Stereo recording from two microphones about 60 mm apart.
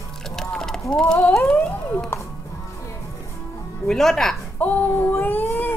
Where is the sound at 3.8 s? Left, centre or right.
Centre.